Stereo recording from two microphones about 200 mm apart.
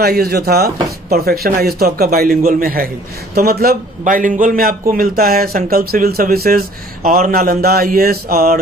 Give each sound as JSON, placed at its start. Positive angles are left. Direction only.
{"t": 0.0, "sound": "speech", "side_deg": -50}